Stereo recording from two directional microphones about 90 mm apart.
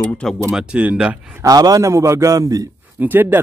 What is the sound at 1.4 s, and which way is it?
A man's voice, 45° right (ahead or behind).